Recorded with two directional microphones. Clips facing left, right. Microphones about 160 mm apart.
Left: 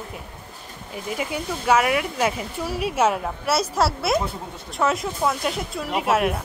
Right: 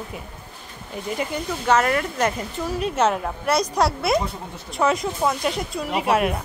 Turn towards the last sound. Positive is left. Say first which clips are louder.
# even
turn(degrees=0)  # may be behind; listen again after turning